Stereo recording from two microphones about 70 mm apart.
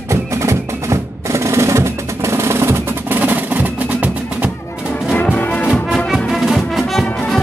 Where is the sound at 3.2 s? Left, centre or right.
Right.